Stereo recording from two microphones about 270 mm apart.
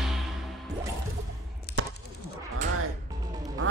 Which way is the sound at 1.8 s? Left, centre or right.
Right.